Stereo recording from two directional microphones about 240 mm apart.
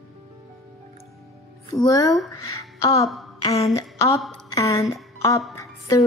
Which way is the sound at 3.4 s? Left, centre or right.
Left.